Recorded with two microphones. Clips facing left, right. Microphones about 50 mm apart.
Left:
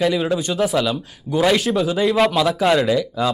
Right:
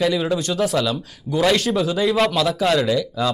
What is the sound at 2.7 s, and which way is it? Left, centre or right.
Speech, centre.